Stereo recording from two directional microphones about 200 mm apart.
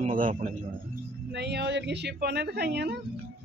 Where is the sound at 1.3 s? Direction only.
55° right (ahead or behind).